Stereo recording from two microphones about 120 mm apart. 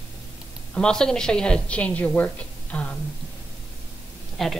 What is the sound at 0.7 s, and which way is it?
A woman's voice, 5° left (ahead or behind).